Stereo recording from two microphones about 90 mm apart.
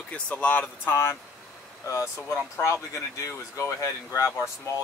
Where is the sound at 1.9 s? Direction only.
30° left (ahead or behind).